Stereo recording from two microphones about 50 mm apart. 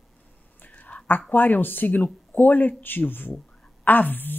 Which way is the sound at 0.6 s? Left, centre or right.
Left.